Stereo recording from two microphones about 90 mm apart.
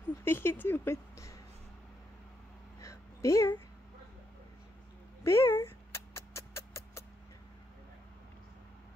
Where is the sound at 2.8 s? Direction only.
35° left (ahead or behind).